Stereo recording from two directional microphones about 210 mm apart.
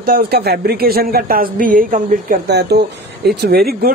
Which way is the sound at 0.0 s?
45° right (ahead or behind).